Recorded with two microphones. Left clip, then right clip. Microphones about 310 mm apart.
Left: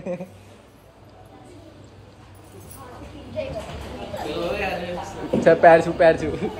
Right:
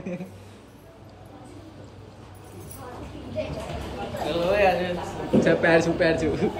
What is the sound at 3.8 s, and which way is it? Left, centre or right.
A man's voice, centre.